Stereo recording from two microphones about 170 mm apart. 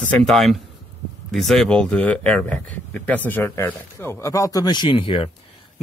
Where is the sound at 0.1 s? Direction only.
Centre (ahead or behind).